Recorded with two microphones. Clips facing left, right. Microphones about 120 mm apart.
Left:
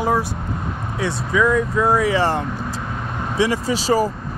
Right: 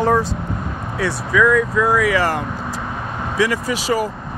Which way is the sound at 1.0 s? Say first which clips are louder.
Right 2 dB; 20° left (ahead or behind).